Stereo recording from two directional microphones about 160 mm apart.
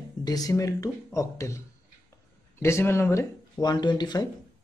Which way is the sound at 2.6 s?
15° left (ahead or behind).